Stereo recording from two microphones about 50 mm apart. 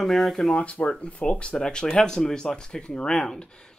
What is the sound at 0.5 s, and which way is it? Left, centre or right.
Speech, left.